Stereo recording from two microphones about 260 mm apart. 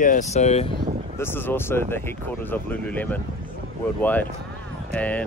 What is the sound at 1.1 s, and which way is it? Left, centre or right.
Speech, centre.